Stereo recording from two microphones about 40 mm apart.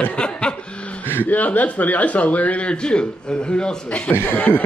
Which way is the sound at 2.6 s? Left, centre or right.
Left.